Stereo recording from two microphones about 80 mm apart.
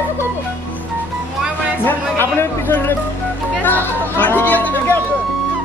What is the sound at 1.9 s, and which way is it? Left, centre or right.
Speech, left.